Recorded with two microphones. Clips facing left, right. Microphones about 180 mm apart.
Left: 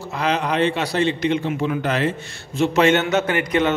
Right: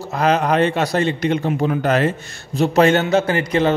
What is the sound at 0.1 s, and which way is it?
A man's voice, 45° right (ahead or behind).